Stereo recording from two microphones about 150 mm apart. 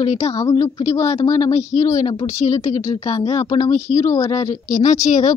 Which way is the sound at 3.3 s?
45° left (ahead or behind).